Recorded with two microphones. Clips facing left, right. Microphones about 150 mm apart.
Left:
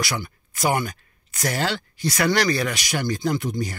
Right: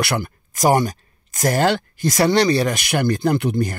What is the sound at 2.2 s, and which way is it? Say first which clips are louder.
Speech: right 5 dB; 25° right (ahead or behind).